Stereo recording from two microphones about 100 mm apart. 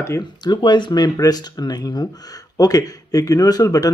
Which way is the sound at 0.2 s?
45° left (ahead or behind).